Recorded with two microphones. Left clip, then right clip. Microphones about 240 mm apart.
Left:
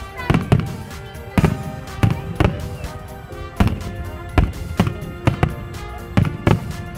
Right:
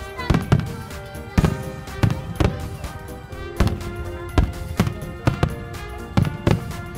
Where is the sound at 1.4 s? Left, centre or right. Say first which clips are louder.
Left 3 dB; centre.